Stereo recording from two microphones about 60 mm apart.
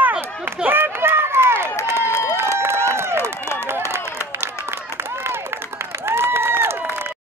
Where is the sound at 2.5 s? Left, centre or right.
Right.